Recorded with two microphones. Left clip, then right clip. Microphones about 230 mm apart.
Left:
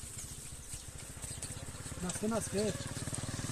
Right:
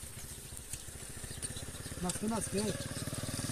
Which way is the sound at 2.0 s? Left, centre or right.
Right.